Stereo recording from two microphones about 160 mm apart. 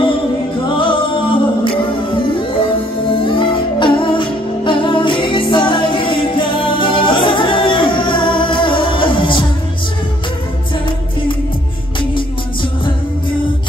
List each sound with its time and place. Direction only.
0.7 s music: 30° left (ahead or behind)